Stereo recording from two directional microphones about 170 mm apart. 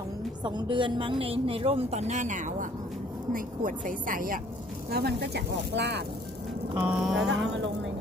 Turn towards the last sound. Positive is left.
turn(degrees=-90)